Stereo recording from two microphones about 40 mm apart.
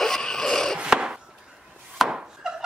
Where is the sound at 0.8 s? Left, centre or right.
Right.